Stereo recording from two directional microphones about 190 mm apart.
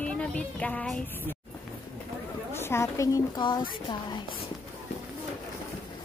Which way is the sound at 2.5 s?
15° left (ahead or behind).